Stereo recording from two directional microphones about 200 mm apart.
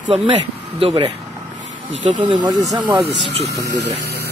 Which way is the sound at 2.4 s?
20° right (ahead or behind).